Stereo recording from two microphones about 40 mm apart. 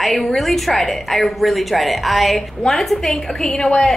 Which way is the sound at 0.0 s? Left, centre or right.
Centre.